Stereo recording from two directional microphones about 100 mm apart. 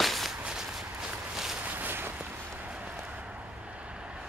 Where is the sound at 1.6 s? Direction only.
20° right (ahead or behind).